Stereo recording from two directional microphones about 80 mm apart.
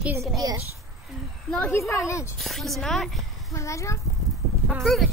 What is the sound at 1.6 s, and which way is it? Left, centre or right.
Speech, left.